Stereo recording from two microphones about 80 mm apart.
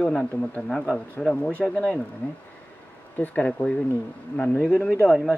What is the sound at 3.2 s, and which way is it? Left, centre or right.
Speech, centre.